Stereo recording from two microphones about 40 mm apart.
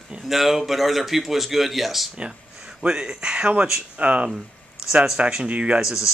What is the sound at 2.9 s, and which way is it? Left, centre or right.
Speech, centre.